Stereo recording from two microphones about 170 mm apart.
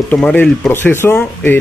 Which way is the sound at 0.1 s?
10° left (ahead or behind).